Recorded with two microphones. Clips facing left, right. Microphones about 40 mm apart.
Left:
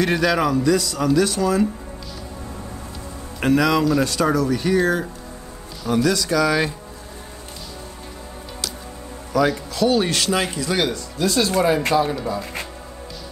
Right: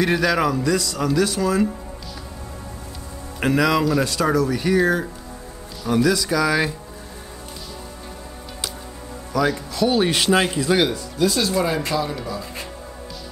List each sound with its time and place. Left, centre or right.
0.0 s speech: centre
3.3 s speech: centre
9.3 s speech: centre
11.1 s speech: centre
11.9 s speech: left